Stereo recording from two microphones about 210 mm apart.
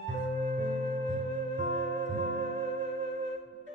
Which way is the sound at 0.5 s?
35° right (ahead or behind).